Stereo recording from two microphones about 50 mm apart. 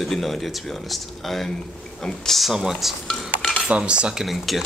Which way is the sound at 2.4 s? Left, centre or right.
Centre.